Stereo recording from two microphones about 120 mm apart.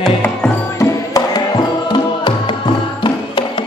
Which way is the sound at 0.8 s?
30° left (ahead or behind).